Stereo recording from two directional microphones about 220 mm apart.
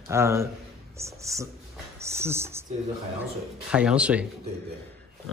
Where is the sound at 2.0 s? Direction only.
10° right (ahead or behind).